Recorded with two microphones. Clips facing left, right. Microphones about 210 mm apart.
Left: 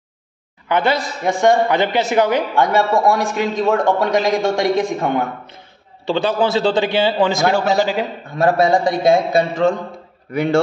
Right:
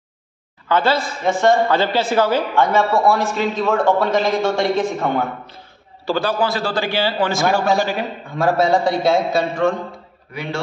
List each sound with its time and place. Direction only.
0.7 s a man's voice: 20° left (ahead or behind)
10.3 s a man's voice: 50° left (ahead or behind)